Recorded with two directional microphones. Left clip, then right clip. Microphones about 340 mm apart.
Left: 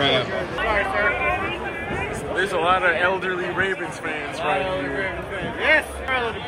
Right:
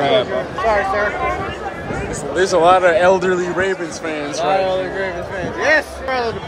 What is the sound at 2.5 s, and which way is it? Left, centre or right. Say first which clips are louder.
A man's voice: right 8 dB; centre.